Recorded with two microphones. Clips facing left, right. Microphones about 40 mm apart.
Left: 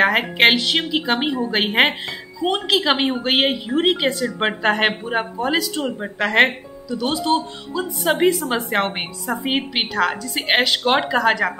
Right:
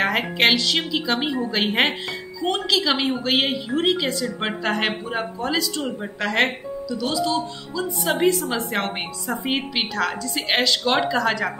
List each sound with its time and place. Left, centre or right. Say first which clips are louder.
0.0 s a woman's voice: left 4 dB; centre
1.6 s a woman's voice: left 3 dB; centre
6.9 s speech: left 4 dB; left
8.1 s a woman's voice: left 3 dB; left